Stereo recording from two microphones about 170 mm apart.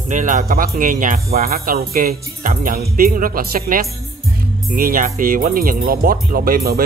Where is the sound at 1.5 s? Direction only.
60° right (ahead or behind).